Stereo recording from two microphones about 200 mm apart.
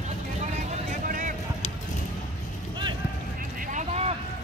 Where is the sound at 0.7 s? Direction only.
40° right (ahead or behind).